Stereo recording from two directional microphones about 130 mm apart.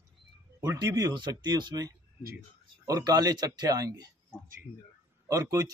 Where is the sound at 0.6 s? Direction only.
30° right (ahead or behind).